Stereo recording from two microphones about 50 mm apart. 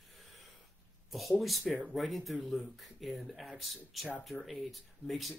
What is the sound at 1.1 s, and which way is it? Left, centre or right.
Speech, centre.